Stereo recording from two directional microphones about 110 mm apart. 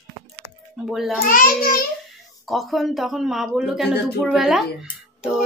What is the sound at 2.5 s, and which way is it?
Speech, centre (ahead or behind).